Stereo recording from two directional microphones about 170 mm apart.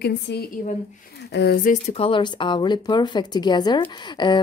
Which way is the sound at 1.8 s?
35° left (ahead or behind).